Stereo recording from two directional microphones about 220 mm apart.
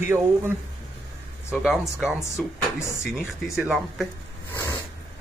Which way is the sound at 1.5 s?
Centre (ahead or behind).